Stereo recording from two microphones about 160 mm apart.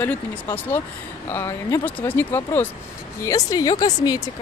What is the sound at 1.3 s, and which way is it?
Speech, 15° left (ahead or behind).